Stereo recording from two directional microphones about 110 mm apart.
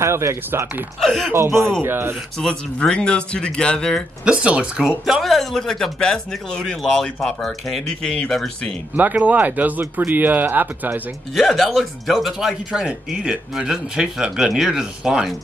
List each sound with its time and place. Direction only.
0.0 s speech: 25° right (ahead or behind)
1.0 s speech: centre (ahead or behind)
1.8 s speech: 20° right (ahead or behind)
2.4 s speech: 5° left (ahead or behind)
4.2 s speech: 10° right (ahead or behind)
8.9 s speech: 15° right (ahead or behind)
11.3 s speech: centre (ahead or behind)